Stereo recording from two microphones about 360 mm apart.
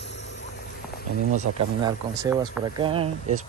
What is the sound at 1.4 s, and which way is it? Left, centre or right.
Speech, centre.